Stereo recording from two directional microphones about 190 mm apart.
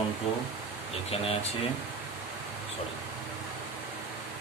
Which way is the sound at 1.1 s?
30° left (ahead or behind).